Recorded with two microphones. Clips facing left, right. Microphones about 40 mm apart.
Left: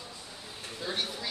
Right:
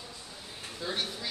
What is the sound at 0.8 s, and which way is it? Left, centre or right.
Speech, centre.